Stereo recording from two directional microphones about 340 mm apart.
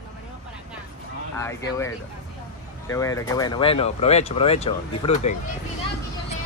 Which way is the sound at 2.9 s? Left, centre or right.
Centre.